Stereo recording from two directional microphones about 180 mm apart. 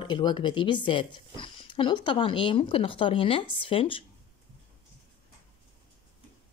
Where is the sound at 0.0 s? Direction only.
25° left (ahead or behind).